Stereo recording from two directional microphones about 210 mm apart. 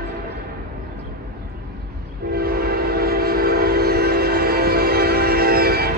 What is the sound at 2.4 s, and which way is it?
Train, 45° right (ahead or behind).